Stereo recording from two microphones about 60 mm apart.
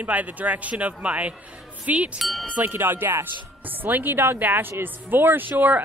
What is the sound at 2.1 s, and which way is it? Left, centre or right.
Speech, centre.